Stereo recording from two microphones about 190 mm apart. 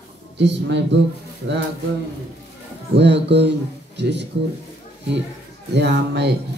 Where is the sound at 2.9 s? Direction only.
65° right (ahead or behind).